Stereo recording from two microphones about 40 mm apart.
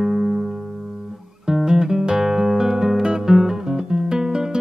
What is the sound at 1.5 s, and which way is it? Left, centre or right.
Guitar, centre.